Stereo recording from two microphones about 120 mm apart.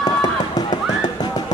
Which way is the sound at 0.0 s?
35° left (ahead or behind).